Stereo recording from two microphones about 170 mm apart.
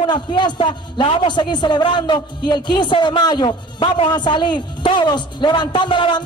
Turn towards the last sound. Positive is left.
turn(degrees=30)  # may be behind; listen again after turning